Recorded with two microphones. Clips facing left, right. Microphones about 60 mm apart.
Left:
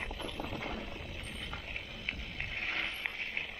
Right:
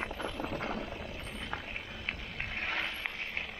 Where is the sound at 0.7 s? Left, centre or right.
Right.